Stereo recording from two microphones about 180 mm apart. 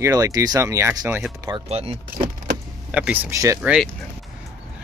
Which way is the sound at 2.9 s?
10° right (ahead or behind).